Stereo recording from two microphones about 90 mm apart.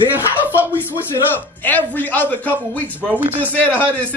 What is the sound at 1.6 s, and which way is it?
A woman's voice, 20° left (ahead or behind).